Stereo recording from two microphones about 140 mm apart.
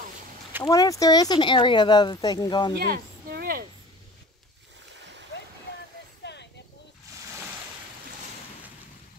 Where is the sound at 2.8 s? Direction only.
90° right.